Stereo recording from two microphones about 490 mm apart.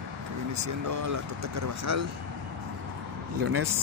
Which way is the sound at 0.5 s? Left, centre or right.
Right.